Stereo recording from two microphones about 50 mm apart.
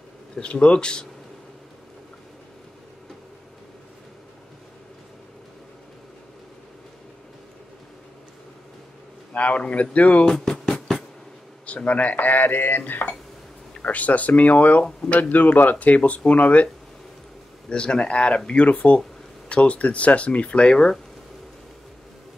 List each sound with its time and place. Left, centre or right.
0.4 s speech: left
9.3 s speech: left
10.2 s speech: centre
11.6 s speech: left
13.7 s speech: left
17.6 s speech: centre